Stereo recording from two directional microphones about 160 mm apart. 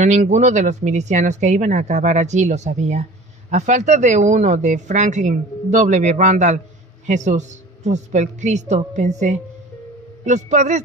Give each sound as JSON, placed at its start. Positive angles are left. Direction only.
{"t": 0.0, "sound": "speech", "side_deg": -50}